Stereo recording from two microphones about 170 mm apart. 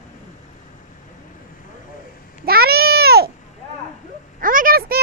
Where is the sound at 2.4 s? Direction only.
65° right (ahead or behind).